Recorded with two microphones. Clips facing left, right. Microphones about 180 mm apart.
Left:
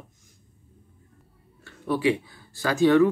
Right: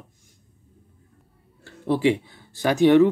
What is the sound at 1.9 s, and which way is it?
Speech, 25° right (ahead or behind).